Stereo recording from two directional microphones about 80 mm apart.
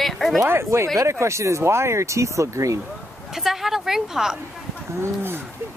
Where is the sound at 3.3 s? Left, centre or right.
Centre.